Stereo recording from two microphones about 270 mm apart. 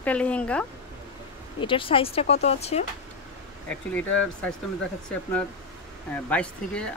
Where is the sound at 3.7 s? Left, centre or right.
Centre.